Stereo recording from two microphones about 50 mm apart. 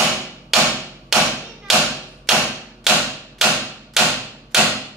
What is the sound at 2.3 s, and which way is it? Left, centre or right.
Hammer, centre.